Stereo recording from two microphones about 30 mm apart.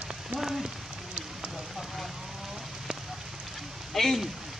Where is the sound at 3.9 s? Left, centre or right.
Centre.